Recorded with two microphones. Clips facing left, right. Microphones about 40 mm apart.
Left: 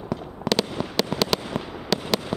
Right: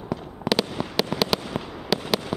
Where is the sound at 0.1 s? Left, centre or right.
Centre.